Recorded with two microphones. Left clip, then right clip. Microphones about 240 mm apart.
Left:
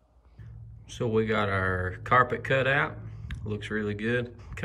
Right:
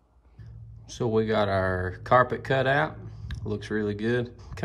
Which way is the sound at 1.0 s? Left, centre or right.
Centre.